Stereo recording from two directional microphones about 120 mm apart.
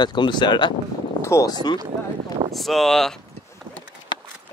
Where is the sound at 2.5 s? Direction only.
Centre (ahead or behind).